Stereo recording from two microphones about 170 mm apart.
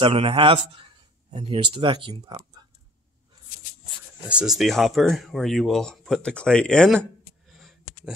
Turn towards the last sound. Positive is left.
turn(degrees=5)  # may be behind; listen again after turning